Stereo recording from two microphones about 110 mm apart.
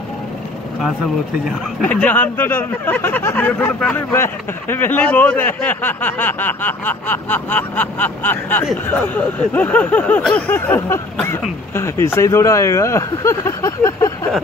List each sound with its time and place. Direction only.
1.8 s speech: 10° left (ahead or behind); by 14.1 s 30° left (ahead or behind)